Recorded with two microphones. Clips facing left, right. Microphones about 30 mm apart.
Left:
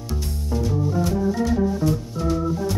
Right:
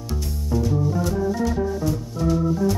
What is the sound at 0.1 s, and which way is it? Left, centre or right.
Music, centre.